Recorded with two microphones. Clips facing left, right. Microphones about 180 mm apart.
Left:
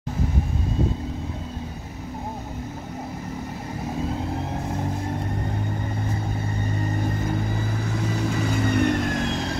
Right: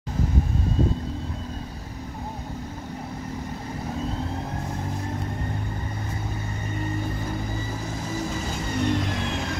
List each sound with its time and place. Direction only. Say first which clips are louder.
8.4 s vehicle: left 6 dB; 60° left (ahead or behind)